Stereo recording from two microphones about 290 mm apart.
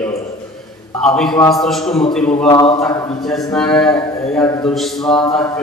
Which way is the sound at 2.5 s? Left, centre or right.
Centre.